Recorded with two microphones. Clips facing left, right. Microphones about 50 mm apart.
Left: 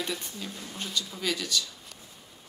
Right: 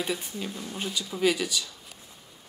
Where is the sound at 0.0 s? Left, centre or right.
Centre.